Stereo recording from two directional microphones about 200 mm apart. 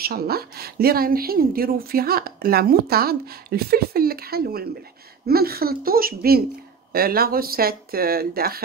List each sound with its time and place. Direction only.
0.0 s a woman's voice: 50° right (ahead or behind)